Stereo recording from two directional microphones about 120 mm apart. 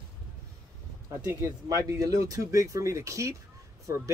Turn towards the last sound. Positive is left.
turn(degrees=-25)  # may be behind; listen again after turning